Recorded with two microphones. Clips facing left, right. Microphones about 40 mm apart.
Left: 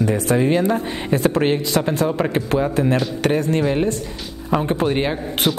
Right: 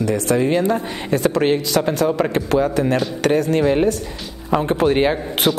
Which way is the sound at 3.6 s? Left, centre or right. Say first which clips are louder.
Right 3 dB; centre.